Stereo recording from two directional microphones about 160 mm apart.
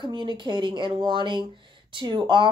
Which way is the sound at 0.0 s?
30° right (ahead or behind).